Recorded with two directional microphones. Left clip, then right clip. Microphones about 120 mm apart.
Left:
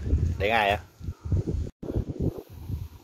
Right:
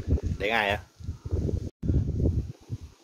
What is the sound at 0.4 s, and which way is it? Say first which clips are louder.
Speech: left 3 dB; 10° right (ahead or behind).